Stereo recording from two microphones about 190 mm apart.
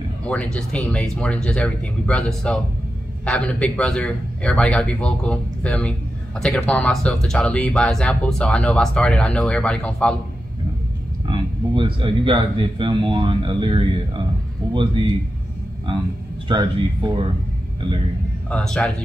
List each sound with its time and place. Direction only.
0.2 s a man's voice: 5° left (ahead or behind)
11.2 s speech: 25° right (ahead or behind)
16.4 s speech: 25° right (ahead or behind)
18.5 s a man's voice: 5° left (ahead or behind)